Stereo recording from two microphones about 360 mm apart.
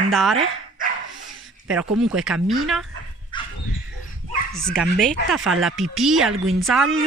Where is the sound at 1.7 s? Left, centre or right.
Centre.